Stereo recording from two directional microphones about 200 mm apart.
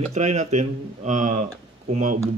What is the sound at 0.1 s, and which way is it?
Speech, 35° right (ahead or behind).